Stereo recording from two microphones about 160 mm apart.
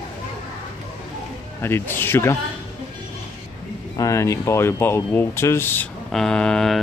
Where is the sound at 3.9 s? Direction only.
20° left (ahead or behind).